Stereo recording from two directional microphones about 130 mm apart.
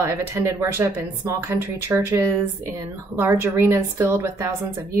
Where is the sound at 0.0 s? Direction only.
20° right (ahead or behind).